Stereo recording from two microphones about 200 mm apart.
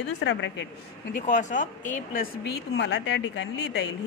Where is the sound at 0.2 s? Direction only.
65° left (ahead or behind).